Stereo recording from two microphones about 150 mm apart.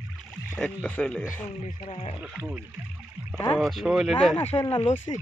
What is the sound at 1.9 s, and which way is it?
Speech, 40° left (ahead or behind).